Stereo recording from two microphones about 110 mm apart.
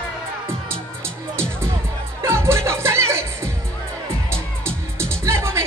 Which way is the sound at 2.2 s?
25° right (ahead or behind).